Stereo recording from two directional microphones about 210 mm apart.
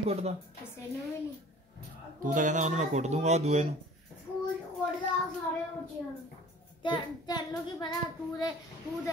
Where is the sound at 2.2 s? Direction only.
40° right (ahead or behind).